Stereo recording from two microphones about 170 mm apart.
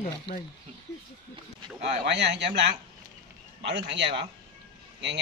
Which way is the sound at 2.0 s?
90° right.